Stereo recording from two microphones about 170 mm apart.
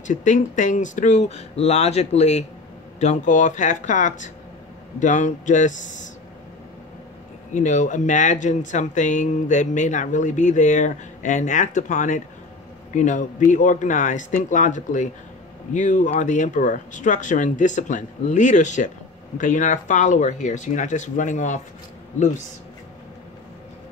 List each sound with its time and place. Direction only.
0.0 s speech: 50° left (ahead or behind)
7.5 s speech: 45° left (ahead or behind)